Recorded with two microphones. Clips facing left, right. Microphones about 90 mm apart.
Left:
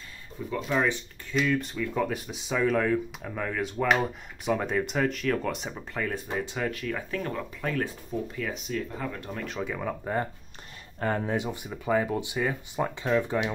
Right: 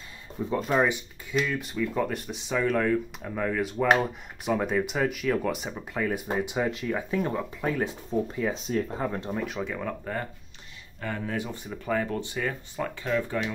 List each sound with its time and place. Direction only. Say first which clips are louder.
0.4 s speech: right 5 dB; 25° right (ahead or behind)
1.3 s speech: left 1 dB; centre (ahead or behind)
6.3 s speech: right 3 dB; 15° right (ahead or behind)
9.3 s speech: right 2 dB; 5° right (ahead or behind)
11.0 s speech: left 5 dB; 40° left (ahead or behind)
11.2 s speech: left 2 dB; 20° left (ahead or behind)